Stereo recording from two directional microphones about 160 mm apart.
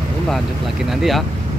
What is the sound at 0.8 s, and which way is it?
Speech, centre (ahead or behind).